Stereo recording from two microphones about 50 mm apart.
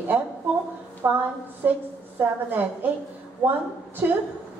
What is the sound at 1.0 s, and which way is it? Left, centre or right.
A woman's voice, right.